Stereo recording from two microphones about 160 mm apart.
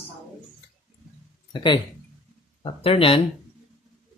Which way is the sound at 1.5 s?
30° left (ahead or behind).